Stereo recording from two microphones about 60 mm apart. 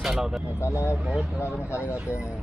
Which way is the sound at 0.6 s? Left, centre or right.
Left.